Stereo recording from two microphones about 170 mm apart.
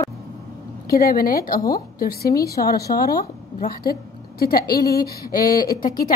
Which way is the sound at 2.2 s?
20° left (ahead or behind).